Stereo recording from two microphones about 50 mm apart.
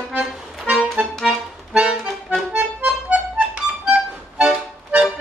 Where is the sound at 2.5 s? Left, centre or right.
Right.